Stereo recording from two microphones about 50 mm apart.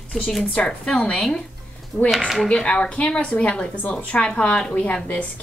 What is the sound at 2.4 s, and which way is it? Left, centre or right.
A woman's voice, left.